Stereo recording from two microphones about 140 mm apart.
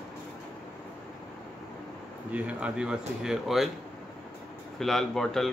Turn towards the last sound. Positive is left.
turn(degrees=5)  # may be behind; listen again after turning